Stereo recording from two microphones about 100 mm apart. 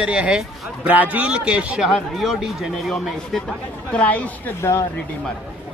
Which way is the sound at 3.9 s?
15° left (ahead or behind).